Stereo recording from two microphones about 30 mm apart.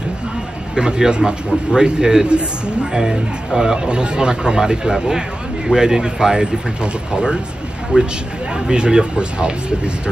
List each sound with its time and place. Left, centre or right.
0.7 s speech: right
2.2 s speech: right
2.9 s speech: centre
7.9 s speech: right
8.5 s speech: right